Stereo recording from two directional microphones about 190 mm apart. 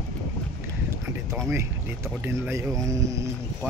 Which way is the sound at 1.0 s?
15° right (ahead or behind).